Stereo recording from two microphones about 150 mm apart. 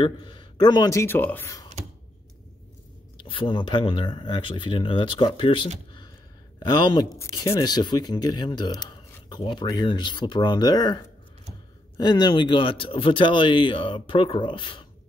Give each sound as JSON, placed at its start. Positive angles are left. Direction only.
{"t": 0.0, "sound": "speech", "side_deg": 35}
{"t": 3.3, "sound": "speech", "side_deg": 35}
{"t": 12.0, "sound": "speech", "side_deg": 30}